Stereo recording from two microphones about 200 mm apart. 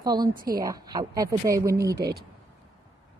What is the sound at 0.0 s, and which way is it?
Speech, 20° right (ahead or behind).